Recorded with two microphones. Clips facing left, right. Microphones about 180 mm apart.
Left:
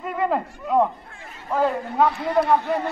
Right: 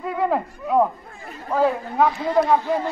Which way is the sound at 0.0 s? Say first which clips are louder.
Right 1 dB; centre (ahead or behind).